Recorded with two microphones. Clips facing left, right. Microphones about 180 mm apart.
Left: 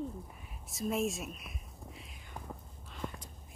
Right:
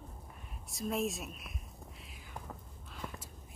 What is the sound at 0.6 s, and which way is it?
Speech, centre (ahead or behind).